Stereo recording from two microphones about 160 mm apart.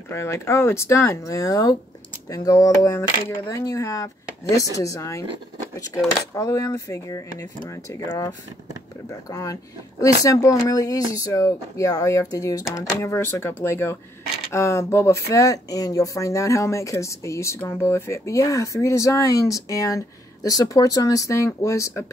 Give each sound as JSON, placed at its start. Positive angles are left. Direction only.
{"t": 0.1, "sound": "speech", "side_deg": 15}
{"t": 6.3, "sound": "speech", "side_deg": 20}
{"t": 9.3, "sound": "speech", "side_deg": 20}